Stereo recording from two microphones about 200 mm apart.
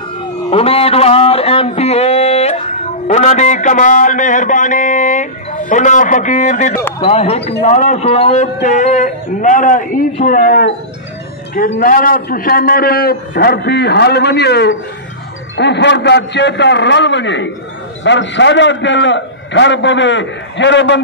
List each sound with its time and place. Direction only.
0.5 s a man's voice: 30° left (ahead or behind); by 21.0 s 65° left (ahead or behind)